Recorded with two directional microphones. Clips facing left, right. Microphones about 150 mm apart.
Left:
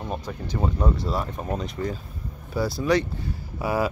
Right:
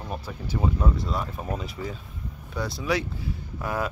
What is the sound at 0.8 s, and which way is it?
Speech, centre (ahead or behind).